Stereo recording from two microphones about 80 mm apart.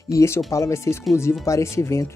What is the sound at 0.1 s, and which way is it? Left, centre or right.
Speech, left.